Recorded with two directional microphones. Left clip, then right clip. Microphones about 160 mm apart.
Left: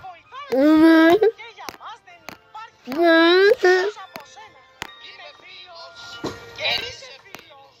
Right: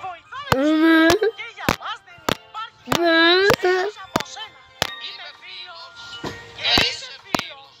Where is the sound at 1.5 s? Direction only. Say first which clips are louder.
Right 11 dB; 30° right (ahead or behind).